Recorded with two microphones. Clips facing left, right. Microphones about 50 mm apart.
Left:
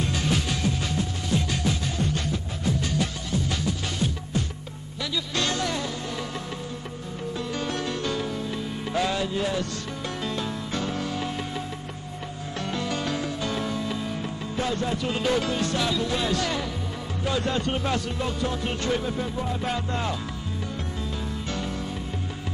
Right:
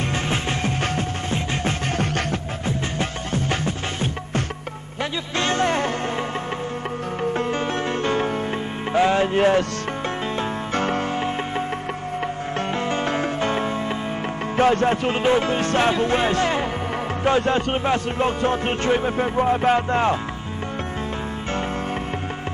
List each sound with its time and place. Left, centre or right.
0.0 s music: right
2.6 s music: right
5.3 s music: right
7.3 s music: right
8.9 s music: right
9.3 s speech: right
10.2 s music: right
14.6 s music: right